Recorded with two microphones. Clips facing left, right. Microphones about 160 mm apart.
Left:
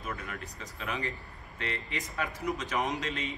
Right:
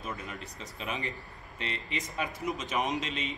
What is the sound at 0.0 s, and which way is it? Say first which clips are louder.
Speech: even; 20° right (ahead or behind).